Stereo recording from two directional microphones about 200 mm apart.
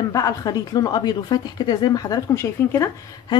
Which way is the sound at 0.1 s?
15° left (ahead or behind).